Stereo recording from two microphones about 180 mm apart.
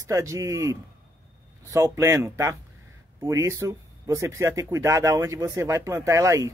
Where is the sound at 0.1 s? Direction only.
15° right (ahead or behind).